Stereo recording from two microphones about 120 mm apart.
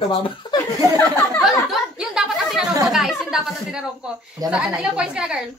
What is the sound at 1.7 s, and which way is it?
A woman's voice, centre (ahead or behind).